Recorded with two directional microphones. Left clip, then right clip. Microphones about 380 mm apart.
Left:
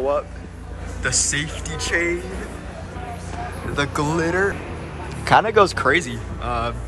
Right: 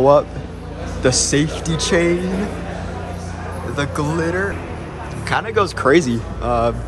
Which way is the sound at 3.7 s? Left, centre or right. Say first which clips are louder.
Even; centre.